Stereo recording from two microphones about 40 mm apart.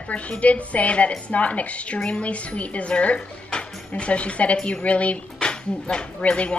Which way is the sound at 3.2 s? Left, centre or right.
Centre.